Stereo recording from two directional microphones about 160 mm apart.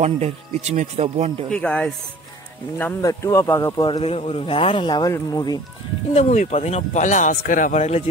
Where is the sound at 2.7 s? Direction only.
15° left (ahead or behind).